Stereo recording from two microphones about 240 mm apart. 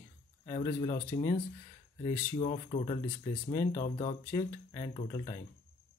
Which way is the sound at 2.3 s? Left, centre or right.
Left.